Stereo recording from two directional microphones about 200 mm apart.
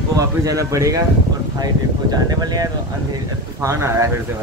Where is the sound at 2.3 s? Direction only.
20° right (ahead or behind).